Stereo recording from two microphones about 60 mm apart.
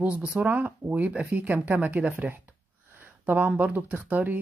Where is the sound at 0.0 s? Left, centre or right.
Centre.